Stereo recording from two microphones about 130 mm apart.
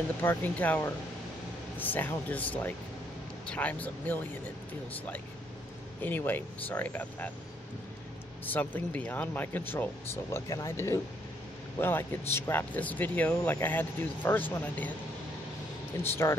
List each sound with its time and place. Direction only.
0.2 s speech: 15° left (ahead or behind)
6.0 s speech: 15° left (ahead or behind)
8.5 s speech: 15° left (ahead or behind)
16.0 s speech: 20° left (ahead or behind)